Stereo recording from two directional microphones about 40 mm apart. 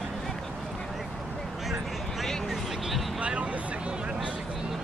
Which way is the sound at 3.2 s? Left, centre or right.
Right.